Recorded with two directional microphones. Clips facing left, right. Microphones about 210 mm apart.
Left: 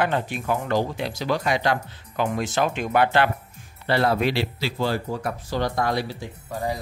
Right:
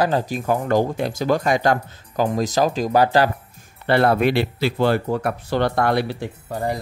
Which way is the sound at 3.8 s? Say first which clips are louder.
Right 4 dB; 55° right (ahead or behind).